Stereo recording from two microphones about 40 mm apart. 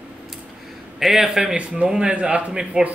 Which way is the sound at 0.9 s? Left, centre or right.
Centre.